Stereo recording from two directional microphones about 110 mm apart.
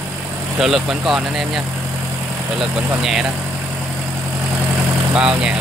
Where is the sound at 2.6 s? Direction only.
5° right (ahead or behind).